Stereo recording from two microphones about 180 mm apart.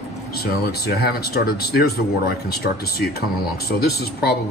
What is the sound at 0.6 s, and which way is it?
Speech, 60° left (ahead or behind).